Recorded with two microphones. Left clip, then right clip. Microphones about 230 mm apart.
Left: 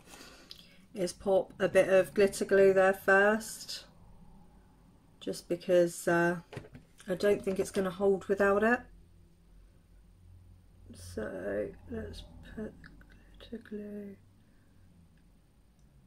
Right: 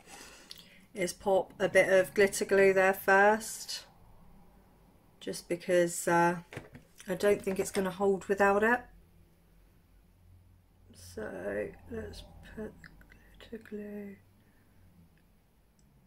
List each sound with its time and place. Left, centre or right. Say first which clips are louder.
0.2 s speech: right 1 dB; centre
5.2 s speech: even; centre
10.9 s a sound: left 2 dB; centre